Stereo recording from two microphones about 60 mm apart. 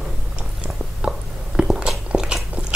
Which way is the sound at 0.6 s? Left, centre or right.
Centre.